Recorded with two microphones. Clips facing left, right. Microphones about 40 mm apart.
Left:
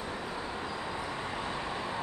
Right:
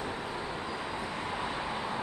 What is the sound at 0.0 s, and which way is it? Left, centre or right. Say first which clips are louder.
Vehicle: right 1 dB; centre.